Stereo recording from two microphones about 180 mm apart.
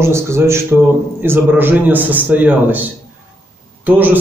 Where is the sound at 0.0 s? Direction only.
15° right (ahead or behind).